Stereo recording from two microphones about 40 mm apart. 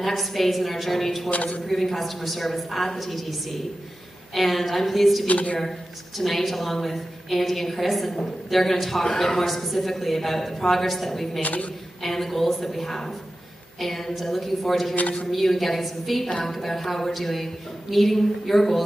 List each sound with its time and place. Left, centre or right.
0.0 s a woman's voice: centre
1.3 s a woman's voice: left
1.7 s a woman's voice: centre
5.2 s a woman's voice: left
5.6 s a woman's voice: centre
11.4 s a woman's voice: left
12.0 s a woman's voice: centre
15.0 s a woman's voice: left
15.3 s a woman's voice: centre